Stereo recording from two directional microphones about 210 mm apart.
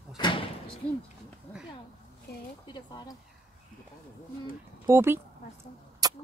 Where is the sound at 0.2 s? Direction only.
25° left (ahead or behind).